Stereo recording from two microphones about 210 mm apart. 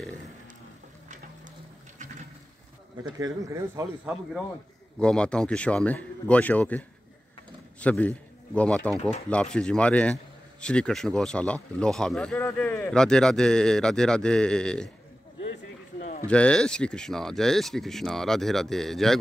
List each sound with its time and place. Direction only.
3.0 s a man's voice: 15° right (ahead or behind); by 6.8 s 5° left (ahead or behind)
7.8 s a man's voice: 5° left (ahead or behind)
16.0 s a sound: 35° left (ahead or behind)
16.3 s a man's voice: 5° left (ahead or behind)